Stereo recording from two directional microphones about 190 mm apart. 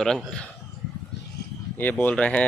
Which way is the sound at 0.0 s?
5° left (ahead or behind).